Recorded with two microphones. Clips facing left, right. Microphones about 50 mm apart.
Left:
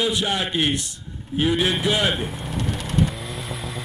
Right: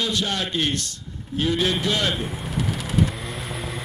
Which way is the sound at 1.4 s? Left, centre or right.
Centre.